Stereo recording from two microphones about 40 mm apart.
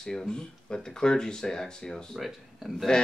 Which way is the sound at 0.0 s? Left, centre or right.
Centre.